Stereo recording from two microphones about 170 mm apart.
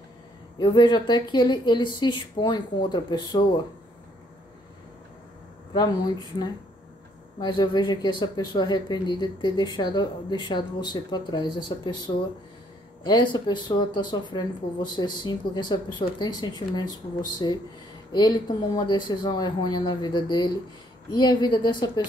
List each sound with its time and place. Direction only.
0.6 s speech: 30° left (ahead or behind)
5.7 s speech: 25° left (ahead or behind)